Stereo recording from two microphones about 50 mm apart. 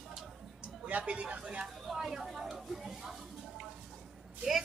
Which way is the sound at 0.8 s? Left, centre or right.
Right.